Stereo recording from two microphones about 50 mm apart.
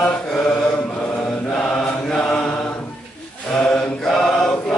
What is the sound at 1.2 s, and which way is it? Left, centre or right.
Mantra, centre.